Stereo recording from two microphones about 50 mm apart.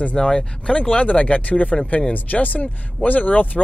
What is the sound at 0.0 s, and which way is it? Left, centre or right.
Speech, left.